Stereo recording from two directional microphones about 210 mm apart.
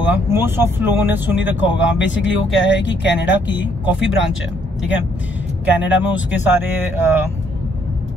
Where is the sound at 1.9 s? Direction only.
60° left (ahead or behind).